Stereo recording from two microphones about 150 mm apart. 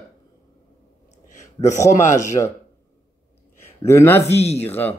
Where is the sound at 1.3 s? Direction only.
55° left (ahead or behind).